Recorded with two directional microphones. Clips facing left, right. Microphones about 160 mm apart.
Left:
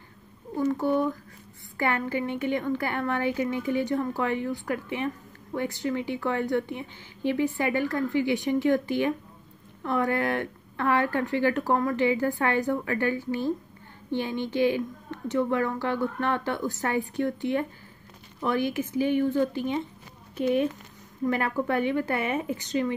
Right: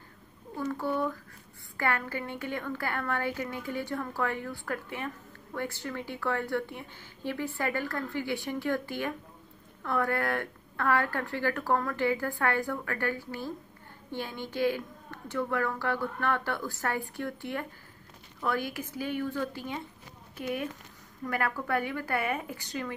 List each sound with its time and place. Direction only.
0.6 s a woman's voice: 20° left (ahead or behind)